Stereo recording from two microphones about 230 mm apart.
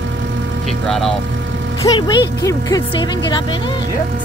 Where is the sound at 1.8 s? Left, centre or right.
Centre.